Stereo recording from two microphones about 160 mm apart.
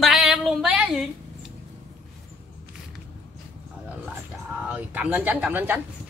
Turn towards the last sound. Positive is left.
turn(degrees=-10)  # may be behind; listen again after turning